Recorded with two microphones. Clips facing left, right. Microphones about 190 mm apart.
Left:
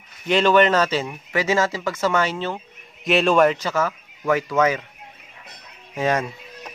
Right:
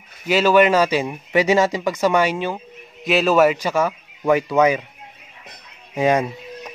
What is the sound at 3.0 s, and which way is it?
Speech, centre (ahead or behind).